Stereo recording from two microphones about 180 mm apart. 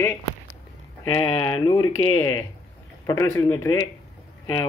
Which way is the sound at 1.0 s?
30° left (ahead or behind).